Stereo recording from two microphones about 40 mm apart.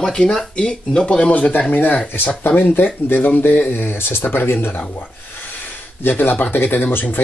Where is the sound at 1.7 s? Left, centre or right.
Left.